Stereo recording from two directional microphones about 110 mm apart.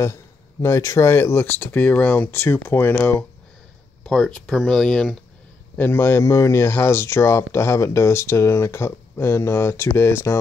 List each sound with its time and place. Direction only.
0.0 s speech: 25° left (ahead or behind); by 5.2 s 5° left (ahead or behind)
5.8 s speech: 20° left (ahead or behind)